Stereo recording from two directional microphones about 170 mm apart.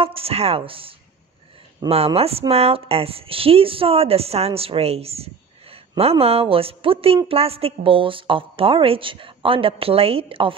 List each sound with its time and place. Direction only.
0.0 s speech: 35° right (ahead or behind)